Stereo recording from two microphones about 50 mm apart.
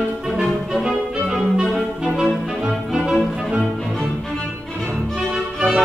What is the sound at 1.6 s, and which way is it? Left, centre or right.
Music, centre.